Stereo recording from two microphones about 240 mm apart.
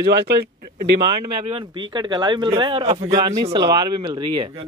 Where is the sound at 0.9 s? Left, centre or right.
Right.